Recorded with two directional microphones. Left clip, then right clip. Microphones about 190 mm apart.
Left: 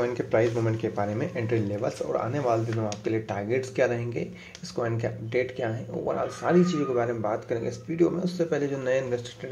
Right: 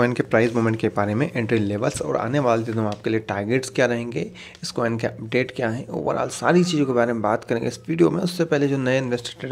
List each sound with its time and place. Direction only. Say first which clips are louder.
0.0 s speech: right 5 dB; 40° right (ahead or behind)